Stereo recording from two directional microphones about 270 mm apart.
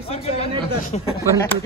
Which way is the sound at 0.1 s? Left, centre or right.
Left.